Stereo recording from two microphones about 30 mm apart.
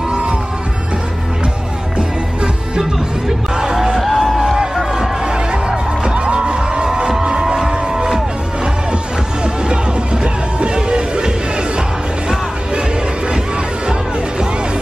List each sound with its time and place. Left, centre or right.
0.1 s music: right
2.0 s music: right
4.0 s music: centre
5.2 s music: right
9.4 s music: right